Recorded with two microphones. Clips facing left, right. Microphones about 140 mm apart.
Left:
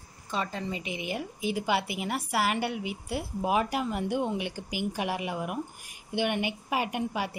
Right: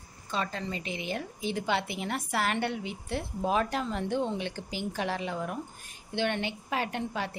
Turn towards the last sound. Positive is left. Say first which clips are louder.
# left 2 dB
turn(degrees=10)  # may be behind; listen again after turning